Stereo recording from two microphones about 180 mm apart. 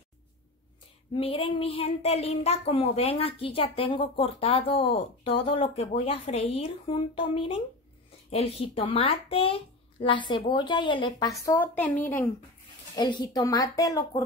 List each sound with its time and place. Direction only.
1.1 s a child's voice: 30° left (ahead or behind)
11.4 s a woman's voice: 10° left (ahead or behind)
12.9 s a child's voice: 25° left (ahead or behind)